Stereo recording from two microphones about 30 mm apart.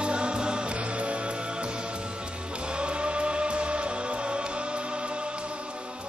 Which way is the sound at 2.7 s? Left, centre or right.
Right.